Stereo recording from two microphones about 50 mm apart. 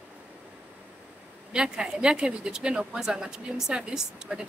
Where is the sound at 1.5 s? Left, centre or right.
Centre.